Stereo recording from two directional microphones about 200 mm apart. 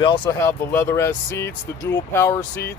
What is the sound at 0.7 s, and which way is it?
Speech, 15° left (ahead or behind).